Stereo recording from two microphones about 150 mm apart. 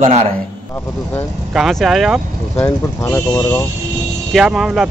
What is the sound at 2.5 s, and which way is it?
Speech, 15° left (ahead or behind).